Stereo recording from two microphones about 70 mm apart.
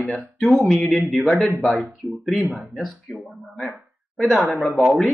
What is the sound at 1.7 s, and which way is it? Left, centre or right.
Speech, centre.